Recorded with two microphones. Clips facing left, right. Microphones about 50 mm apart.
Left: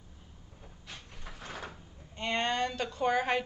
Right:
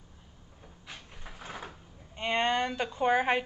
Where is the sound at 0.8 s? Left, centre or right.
Centre.